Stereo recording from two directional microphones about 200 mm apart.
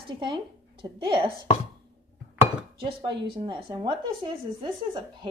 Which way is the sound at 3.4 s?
20° right (ahead or behind).